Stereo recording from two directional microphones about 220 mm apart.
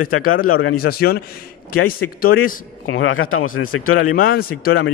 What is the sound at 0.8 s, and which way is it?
Speech, 45° left (ahead or behind).